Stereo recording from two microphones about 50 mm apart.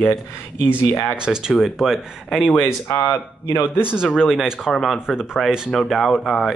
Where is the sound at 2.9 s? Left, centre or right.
Left.